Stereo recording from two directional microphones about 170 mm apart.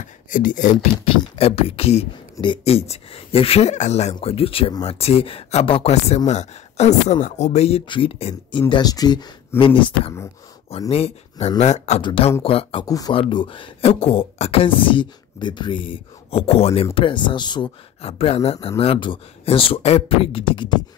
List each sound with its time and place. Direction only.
0.0 s speech: 50° left (ahead or behind)
1.0 s speech: 30° left (ahead or behind)
12.0 s speech: 30° left (ahead or behind)
12.8 s speech: 20° left (ahead or behind)